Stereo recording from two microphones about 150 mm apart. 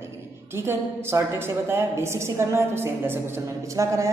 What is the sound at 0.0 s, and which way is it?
A woman's voice, 15° right (ahead or behind).